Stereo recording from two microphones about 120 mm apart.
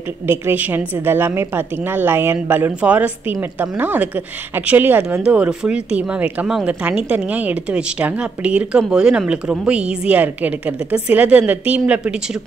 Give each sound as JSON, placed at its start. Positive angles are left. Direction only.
{"t": 0.3, "sound": "a woman's voice", "side_deg": -15}